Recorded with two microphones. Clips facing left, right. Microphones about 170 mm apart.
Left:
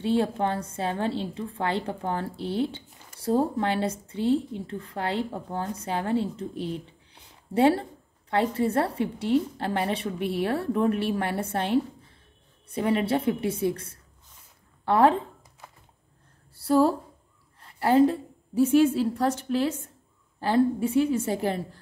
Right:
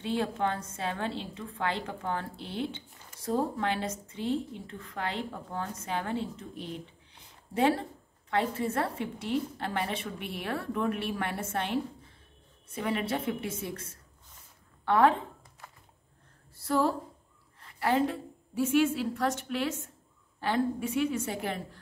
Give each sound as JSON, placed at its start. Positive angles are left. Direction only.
{"t": 0.0, "sound": "a woman's voice", "side_deg": 35}
{"t": 14.9, "sound": "a woman's voice", "side_deg": 35}
{"t": 16.6, "sound": "a woman's voice", "side_deg": 35}